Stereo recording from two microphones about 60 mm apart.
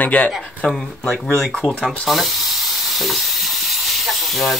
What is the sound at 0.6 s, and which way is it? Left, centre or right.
Speech, centre.